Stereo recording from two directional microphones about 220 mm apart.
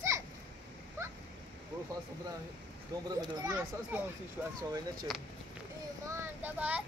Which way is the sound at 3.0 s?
15° right (ahead or behind).